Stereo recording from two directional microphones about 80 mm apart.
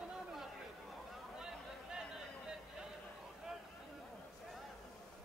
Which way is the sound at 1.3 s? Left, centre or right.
Centre.